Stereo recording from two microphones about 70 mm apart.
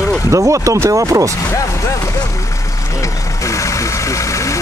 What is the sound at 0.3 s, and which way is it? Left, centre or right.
Speech, right.